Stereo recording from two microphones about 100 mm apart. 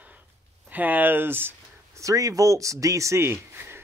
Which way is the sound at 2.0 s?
35° right (ahead or behind).